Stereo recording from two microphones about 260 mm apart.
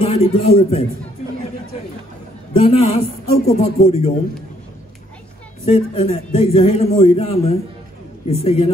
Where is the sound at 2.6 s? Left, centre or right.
Left.